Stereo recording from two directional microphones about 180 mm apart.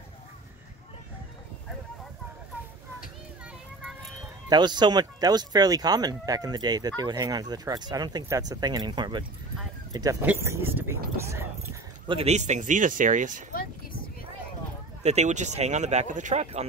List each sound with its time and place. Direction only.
4.5 s speech: 25° right (ahead or behind)
10.2 s speech: 10° right (ahead or behind)
12.1 s speech: 35° right (ahead or behind)
15.0 s speech: 40° right (ahead or behind)